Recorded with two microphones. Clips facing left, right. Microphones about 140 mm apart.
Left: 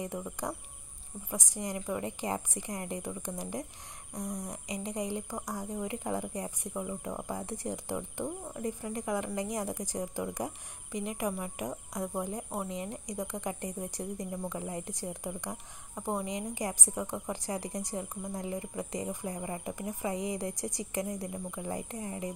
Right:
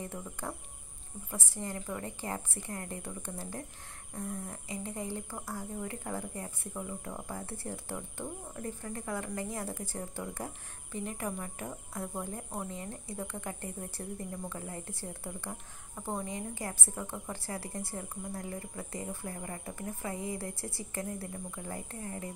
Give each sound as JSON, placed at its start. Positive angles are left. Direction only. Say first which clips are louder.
{"t": 0.0, "sound": "speech", "louder": "left 4 dB", "side_deg": 15}